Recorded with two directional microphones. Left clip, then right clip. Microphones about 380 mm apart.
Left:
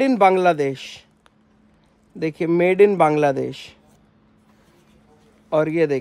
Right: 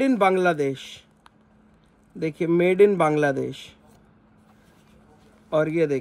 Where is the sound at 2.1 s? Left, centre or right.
Centre.